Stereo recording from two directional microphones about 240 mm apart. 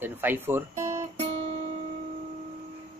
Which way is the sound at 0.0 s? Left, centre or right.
Centre.